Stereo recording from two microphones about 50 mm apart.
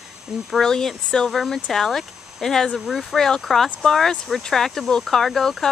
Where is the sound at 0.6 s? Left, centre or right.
Centre.